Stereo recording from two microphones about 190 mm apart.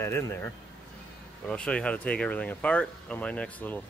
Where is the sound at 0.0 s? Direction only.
15° left (ahead or behind).